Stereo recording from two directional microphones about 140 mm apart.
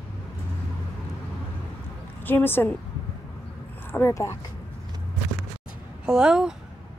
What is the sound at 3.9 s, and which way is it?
Speech, 15° left (ahead or behind).